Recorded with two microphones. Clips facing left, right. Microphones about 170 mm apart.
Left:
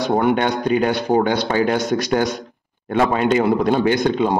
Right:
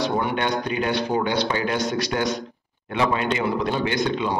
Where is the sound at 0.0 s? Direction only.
50° left (ahead or behind).